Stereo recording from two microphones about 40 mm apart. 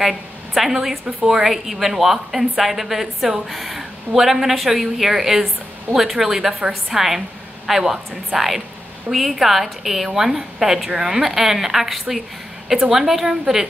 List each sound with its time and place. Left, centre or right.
0.0 s a woman's voice: centre
1.0 s a woman's voice: centre
1.4 s a woman's voice: centre